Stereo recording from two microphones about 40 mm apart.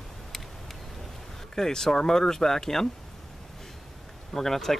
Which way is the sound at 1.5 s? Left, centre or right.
Centre.